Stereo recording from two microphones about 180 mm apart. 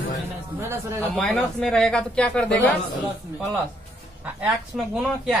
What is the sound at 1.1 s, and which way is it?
Speech, 5° left (ahead or behind).